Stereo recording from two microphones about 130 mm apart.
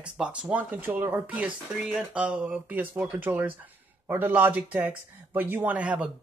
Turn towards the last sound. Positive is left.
turn(degrees=-10)  # may be behind; listen again after turning